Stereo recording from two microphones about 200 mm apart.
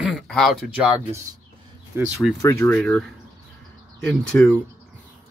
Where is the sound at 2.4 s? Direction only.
10° left (ahead or behind).